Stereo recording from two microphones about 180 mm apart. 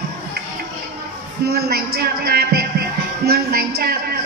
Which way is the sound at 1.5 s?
60° right (ahead or behind).